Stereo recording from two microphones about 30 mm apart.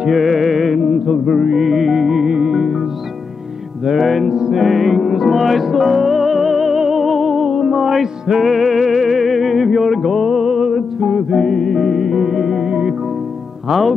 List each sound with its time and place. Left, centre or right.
0.1 s music: centre
3.9 s music: centre
4.3 s music: right
4.6 s music: centre
11.3 s music: centre
13.7 s music: centre